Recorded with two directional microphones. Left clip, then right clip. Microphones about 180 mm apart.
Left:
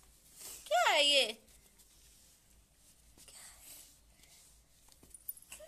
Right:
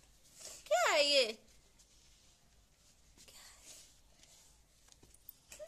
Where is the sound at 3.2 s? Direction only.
15° right (ahead or behind).